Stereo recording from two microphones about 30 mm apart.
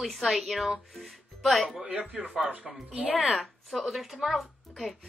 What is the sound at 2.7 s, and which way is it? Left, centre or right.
Speech, centre.